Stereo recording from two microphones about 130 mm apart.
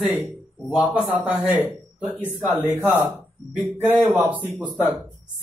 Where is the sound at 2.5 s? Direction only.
15° right (ahead or behind).